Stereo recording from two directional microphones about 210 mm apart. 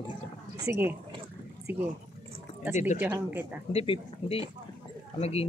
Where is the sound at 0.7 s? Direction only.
10° right (ahead or behind).